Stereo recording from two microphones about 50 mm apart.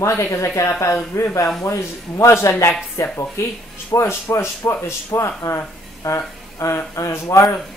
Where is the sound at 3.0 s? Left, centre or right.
Left.